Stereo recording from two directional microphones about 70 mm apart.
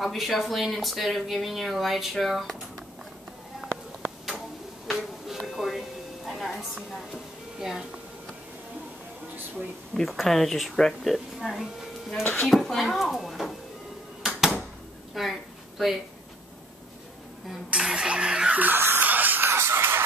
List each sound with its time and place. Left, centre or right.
0.0 s speech: centre
4.8 s a sound: centre
7.5 s speech: centre
9.9 s speech: centre
12.2 s speech: left
12.4 s speech: centre
14.2 s a sound: centre
15.2 s speech: centre
17.6 s a sound: centre; by 20.0 s right